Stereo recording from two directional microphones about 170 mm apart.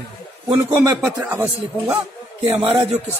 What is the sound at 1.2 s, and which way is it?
Speech, 10° right (ahead or behind).